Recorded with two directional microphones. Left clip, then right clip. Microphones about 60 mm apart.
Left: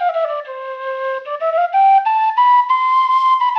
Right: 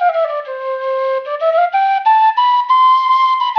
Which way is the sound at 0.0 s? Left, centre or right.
Right.